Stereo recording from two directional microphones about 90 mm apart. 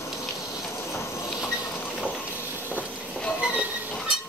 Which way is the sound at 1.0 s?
30° left (ahead or behind).